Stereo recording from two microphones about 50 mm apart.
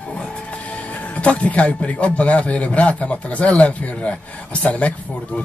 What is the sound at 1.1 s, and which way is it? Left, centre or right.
Speech, left.